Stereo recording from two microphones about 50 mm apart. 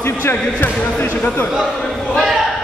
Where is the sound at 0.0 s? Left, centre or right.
Left.